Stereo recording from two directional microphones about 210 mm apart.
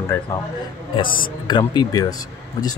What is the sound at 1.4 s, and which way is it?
Speech, 20° left (ahead or behind).